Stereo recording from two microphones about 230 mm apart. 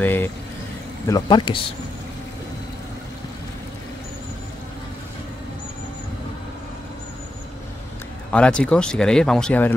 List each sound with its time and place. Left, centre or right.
0.0 s speech: centre
8.3 s speech: centre